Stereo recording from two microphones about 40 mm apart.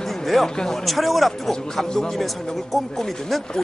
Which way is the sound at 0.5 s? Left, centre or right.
Centre.